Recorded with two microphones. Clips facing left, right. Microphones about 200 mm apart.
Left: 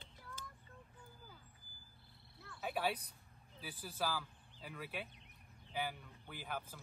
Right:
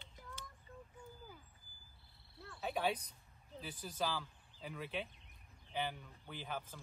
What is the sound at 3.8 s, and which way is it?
Speech, 5° left (ahead or behind).